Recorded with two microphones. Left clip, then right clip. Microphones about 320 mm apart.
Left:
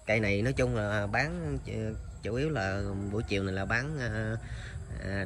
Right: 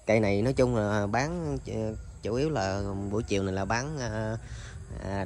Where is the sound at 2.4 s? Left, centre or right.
Right.